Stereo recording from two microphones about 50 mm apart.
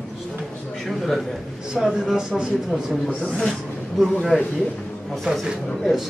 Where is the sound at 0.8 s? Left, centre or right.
Centre.